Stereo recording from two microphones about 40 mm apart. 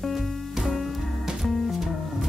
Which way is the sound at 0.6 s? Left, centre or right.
Centre.